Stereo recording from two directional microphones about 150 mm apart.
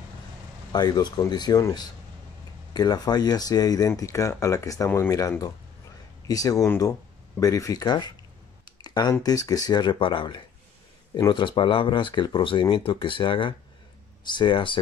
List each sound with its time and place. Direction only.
0.7 s speech: 25° left (ahead or behind)
8.8 s a sound: 25° left (ahead or behind)
9.1 s speech: 25° left (ahead or behind)